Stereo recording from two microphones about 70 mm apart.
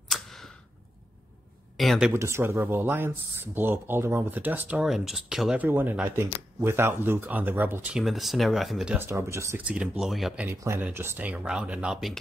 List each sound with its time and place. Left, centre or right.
0.1 s a sound: centre
1.8 s speech: centre
2.1 s speech: right
2.6 s speech: right
4.8 s speech: centre
5.6 s speech: right
6.1 s speech: right
8.0 s speech: centre
8.9 s speech: right
9.2 s speech: right
9.6 s speech: centre
10.0 s speech: centre
10.5 s speech: right
11.1 s speech: centre